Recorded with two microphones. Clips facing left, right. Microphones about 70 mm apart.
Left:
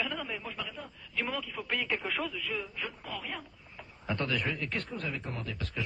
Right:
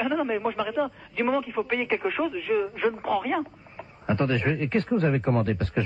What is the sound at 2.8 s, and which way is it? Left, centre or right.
Speech, right.